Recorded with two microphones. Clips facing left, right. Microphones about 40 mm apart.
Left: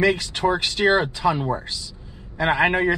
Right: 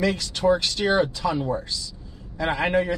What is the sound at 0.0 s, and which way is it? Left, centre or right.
Speech, left.